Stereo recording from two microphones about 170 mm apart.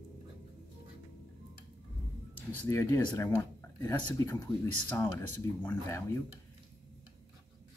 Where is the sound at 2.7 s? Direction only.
15° left (ahead or behind).